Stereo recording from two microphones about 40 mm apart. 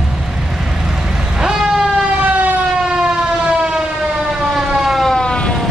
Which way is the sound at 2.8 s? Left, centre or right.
Centre.